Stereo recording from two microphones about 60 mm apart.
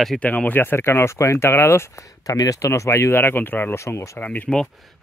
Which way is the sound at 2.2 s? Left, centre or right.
Left.